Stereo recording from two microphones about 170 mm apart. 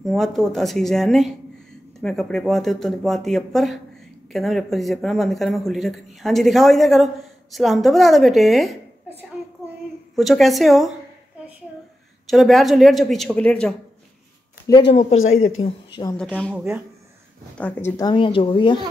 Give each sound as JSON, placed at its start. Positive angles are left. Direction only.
{"t": 0.0, "sound": "speech", "side_deg": 0}
{"t": 10.1, "sound": "speech", "side_deg": 0}
{"t": 12.3, "sound": "speech", "side_deg": 0}
{"t": 15.0, "sound": "speech", "side_deg": 40}
{"t": 16.2, "sound": "speech", "side_deg": 5}
{"t": 17.9, "sound": "speech", "side_deg": 25}